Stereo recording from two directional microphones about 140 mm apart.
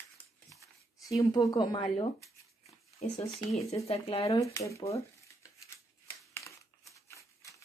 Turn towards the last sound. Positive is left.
turn(degrees=20)  # may be behind; listen again after turning